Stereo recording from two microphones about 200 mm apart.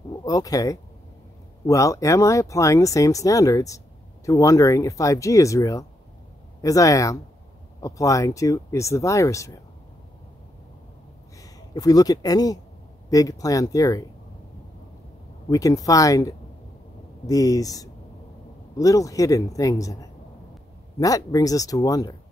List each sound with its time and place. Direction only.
0.2 s speech: 20° left (ahead or behind)
11.7 s speech: 20° left (ahead or behind)
15.5 s speech: 15° left (ahead or behind)